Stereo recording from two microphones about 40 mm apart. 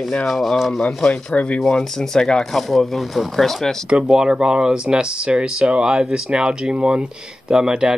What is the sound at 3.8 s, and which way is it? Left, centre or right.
Speech, right.